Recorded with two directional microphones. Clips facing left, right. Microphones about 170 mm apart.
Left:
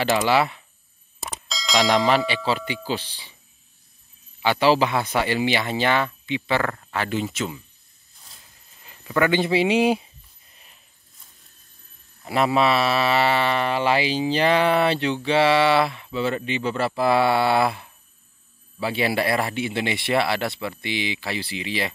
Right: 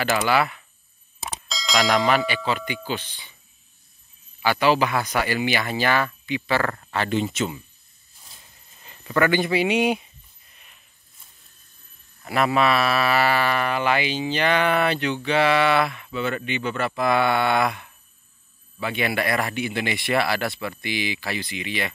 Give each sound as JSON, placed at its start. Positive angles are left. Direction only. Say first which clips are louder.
{"t": 0.3, "sound": "speech", "louder": "left 1 dB", "side_deg": 25}
{"t": 1.2, "sound": "bell", "louder": "even", "side_deg": 0}
{"t": 2.2, "sound": "speech", "louder": "left 1 dB", "side_deg": 30}
{"t": 4.4, "sound": "speech", "louder": "left 1 dB", "side_deg": 25}
{"t": 6.7, "sound": "speech", "louder": "right 2 dB", "side_deg": 5}
{"t": 8.8, "sound": "a sound", "louder": "even", "side_deg": 5}
{"t": 9.2, "sound": "speech", "louder": "left 1 dB", "side_deg": 25}
{"t": 10.5, "sound": "a sound", "louder": "left 1 dB", "side_deg": 30}
{"t": 12.2, "sound": "speech", "louder": "left 1 dB", "side_deg": 25}